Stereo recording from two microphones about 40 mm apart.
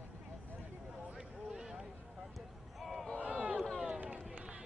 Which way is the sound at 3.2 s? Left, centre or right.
Right.